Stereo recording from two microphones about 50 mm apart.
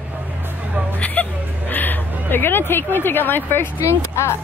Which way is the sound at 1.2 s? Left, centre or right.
Left.